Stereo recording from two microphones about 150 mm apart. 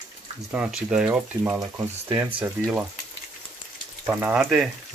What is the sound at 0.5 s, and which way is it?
Speech, 5° right (ahead or behind).